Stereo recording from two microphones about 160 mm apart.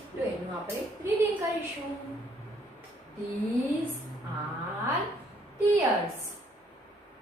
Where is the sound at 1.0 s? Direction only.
10° right (ahead or behind).